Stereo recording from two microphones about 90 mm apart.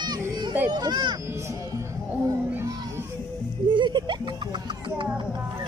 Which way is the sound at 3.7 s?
60° right (ahead or behind).